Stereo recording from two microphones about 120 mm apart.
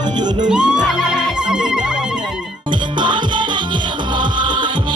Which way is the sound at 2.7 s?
40° right (ahead or behind).